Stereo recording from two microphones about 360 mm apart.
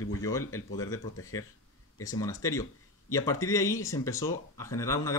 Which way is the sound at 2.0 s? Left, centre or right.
Centre.